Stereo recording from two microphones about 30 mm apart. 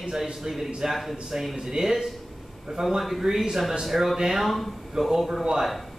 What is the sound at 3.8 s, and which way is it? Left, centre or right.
Speech, centre.